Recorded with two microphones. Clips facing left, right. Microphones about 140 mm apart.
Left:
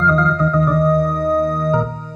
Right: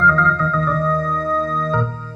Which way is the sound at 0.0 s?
20° left (ahead or behind).